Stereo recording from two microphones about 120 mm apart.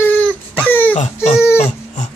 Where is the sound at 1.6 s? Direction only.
80° left.